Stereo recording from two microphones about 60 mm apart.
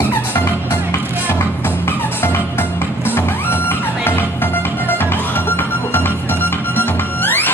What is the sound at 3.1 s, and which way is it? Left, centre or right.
Music, left.